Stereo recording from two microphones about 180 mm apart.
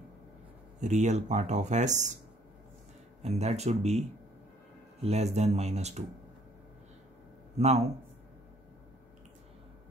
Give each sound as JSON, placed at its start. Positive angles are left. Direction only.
{"t": 0.7, "sound": "speech", "side_deg": -40}
{"t": 3.2, "sound": "speech", "side_deg": -40}
{"t": 5.0, "sound": "speech", "side_deg": -40}
{"t": 7.5, "sound": "speech", "side_deg": -35}